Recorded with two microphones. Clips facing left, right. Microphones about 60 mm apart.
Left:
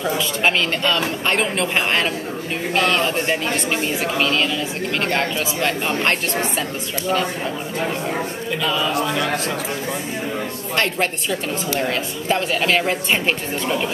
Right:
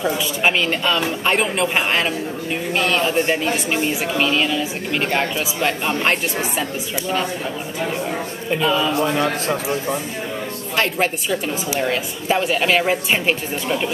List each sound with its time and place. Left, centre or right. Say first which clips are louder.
0.0 s speech: even; centre
8.6 s speech: right 3 dB; centre
8.9 s speech: right 2 dB; right
10.8 s speech: right 1 dB; centre